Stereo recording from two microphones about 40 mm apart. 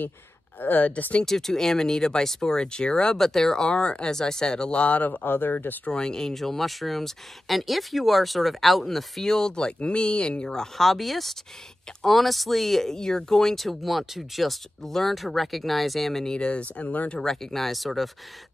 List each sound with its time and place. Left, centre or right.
0.6 s speech: left
1.2 s speech: centre
3.2 s speech: centre
4.7 s speech: left
5.2 s speech: left
5.9 s speech: centre
10.6 s speech: centre
16.3 s speech: left
17.2 s speech: centre